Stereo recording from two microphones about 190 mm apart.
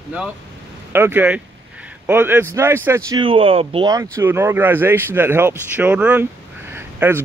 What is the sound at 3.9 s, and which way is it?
Speech, 15° right (ahead or behind).